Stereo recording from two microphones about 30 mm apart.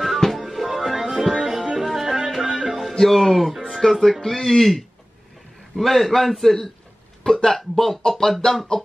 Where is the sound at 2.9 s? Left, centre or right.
Centre.